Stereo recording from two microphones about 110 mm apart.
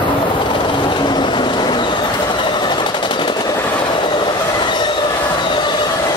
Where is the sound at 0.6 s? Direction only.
45° left (ahead or behind).